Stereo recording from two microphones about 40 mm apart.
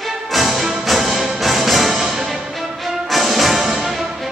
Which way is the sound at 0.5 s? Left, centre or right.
Centre.